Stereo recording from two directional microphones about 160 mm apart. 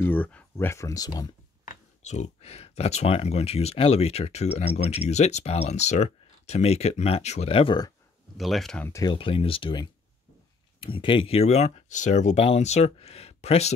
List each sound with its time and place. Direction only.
0.0 s speech: 10° left (ahead or behind)
1.7 s speech: 45° left (ahead or behind); by 7.9 s 30° left (ahead or behind)
8.4 s speech: centre (ahead or behind)
8.8 s speech: 20° left (ahead or behind)
9.1 s speech: 35° left (ahead or behind)